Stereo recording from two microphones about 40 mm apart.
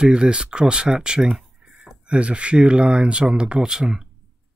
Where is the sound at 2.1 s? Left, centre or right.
Right.